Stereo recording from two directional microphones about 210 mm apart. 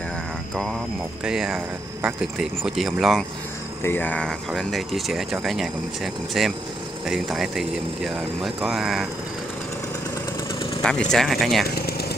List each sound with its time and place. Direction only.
1.2 s speech: 5° right (ahead or behind)
10.8 s speech: 5° left (ahead or behind)
11.6 s vehicle: 45° left (ahead or behind)